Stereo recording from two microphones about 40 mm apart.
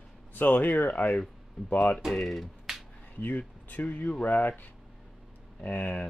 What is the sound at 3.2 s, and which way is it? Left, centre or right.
Speech, left.